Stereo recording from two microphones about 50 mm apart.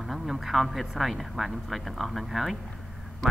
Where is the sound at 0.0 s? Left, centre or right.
Centre.